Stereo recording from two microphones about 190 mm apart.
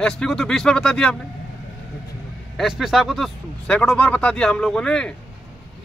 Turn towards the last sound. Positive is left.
turn(degrees=5)  # may be behind; listen again after turning